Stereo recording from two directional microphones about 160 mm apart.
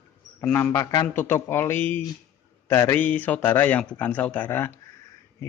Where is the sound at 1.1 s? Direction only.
15° left (ahead or behind).